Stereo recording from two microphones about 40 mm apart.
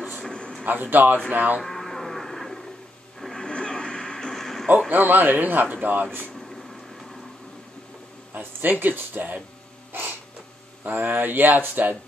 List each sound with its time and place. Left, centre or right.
0.7 s speech: right
1.6 s radio: centre
3.2 s television: centre
3.4 s television: left
4.2 s a sound: centre
4.9 s speech: right
6.4 s a sound: centre
8.3 s speech: right
10.8 s speech: right